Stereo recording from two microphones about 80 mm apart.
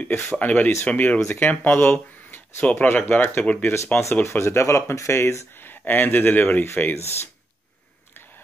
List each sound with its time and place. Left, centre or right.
0.0 s speech: left
4.1 s speech: left